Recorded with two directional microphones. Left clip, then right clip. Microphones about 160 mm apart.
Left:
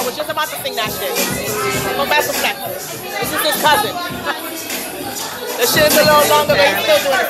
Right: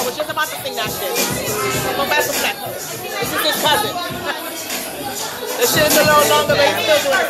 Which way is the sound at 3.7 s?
5° right (ahead or behind).